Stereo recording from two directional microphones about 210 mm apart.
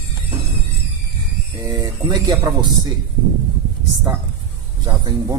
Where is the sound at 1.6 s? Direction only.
20° right (ahead or behind).